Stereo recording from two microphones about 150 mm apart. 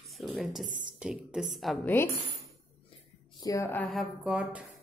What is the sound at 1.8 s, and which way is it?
Speech, 15° left (ahead or behind).